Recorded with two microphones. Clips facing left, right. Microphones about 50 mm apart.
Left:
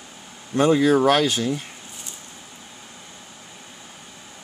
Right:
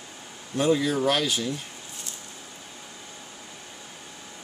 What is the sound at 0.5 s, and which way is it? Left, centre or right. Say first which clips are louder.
Speech: left 6 dB; left.